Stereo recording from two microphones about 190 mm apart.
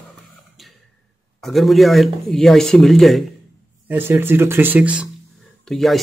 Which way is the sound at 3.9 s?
10° right (ahead or behind).